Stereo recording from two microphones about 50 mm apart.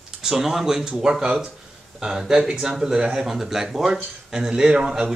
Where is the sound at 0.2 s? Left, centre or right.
Centre.